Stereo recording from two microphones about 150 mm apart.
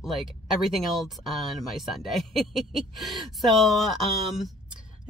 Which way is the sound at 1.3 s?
Centre (ahead or behind).